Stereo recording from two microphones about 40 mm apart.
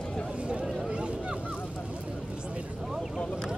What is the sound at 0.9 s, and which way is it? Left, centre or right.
Vehicle, right.